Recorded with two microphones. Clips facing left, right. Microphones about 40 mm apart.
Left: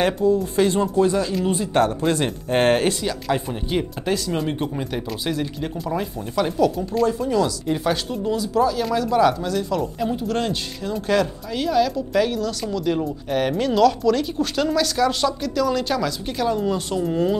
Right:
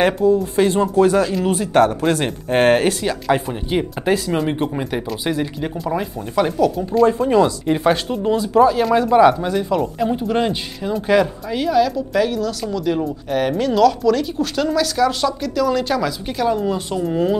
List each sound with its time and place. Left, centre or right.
0.0 s speech: centre
0.9 s speech: right
1.6 s speech: centre
2.9 s speech: right
7.1 s speech: right; by 17.4 s centre